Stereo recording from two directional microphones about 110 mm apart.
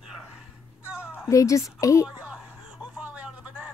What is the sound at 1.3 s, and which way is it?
Speech, 30° left (ahead or behind).